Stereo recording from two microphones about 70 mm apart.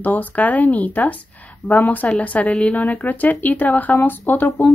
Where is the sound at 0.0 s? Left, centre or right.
Left.